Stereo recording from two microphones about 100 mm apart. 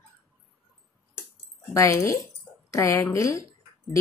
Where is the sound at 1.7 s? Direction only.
30° left (ahead or behind).